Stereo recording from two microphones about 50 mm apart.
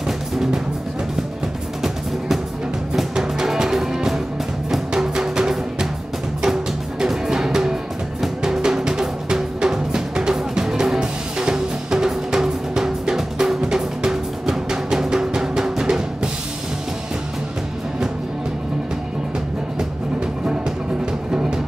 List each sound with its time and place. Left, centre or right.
0.0 s music: centre
1.8 s music: centre
8.2 s drum: centre
19.8 s music: centre